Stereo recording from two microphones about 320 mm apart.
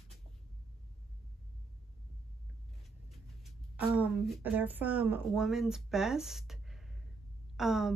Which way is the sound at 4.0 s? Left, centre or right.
Centre.